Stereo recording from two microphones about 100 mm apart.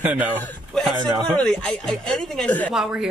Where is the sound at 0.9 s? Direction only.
45° right (ahead or behind).